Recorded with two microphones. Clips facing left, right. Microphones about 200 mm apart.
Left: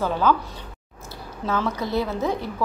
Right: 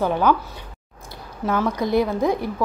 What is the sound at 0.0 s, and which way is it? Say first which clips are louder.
Speech: right 2 dB; 15° right (ahead or behind).